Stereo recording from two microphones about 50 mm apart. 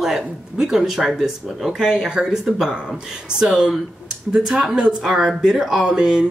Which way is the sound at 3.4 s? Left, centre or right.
Centre.